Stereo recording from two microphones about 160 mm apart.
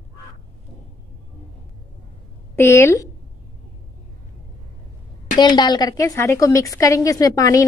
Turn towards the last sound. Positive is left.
turn(degrees=20)  # may be behind; listen again after turning